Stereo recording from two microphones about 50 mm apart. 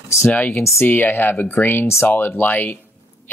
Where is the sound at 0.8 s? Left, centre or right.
Left.